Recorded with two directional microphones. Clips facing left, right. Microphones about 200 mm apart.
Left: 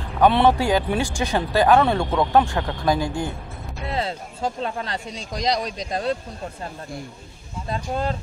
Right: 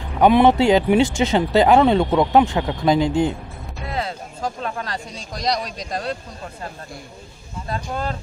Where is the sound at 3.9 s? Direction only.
25° left (ahead or behind).